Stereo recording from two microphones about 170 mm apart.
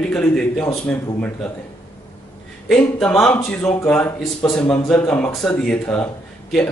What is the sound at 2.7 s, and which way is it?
Speech, 5° left (ahead or behind).